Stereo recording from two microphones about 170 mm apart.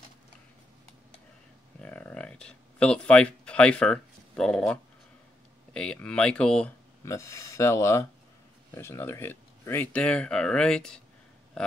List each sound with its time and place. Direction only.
1.8 s a sound: 5° left (ahead or behind)
5.7 s speech: 5° left (ahead or behind)
7.1 s speech: 15° left (ahead or behind)